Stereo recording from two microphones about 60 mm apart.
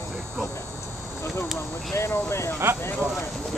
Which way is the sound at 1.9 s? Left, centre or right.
Left.